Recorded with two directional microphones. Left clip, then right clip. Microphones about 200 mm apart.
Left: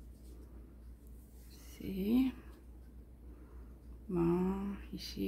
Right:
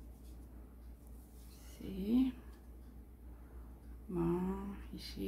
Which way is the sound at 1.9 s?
40° left (ahead or behind).